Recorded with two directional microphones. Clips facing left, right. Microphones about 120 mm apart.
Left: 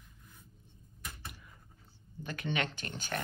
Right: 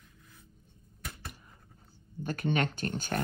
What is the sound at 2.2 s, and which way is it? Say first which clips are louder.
Speech: right 5 dB; 45° right (ahead or behind).